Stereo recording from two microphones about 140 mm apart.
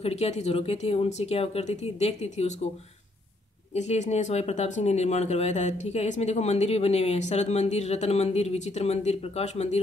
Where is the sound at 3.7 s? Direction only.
50° left (ahead or behind).